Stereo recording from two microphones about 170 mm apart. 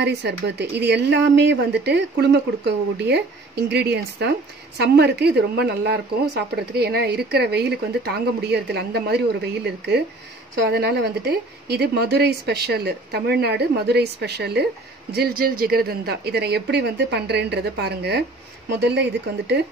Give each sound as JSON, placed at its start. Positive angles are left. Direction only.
{"t": 0.0, "sound": "speech", "side_deg": -80}
{"t": 15.1, "sound": "speech", "side_deg": -60}